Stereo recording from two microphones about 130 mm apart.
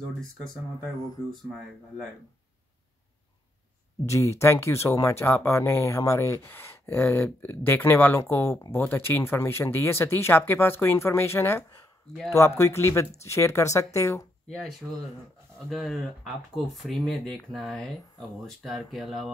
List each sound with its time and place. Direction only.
4.0 s speech: 20° left (ahead or behind)
15.7 s speech: centre (ahead or behind)